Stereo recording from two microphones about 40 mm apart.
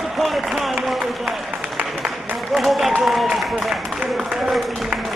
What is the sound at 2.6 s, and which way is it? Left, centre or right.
Applause, centre.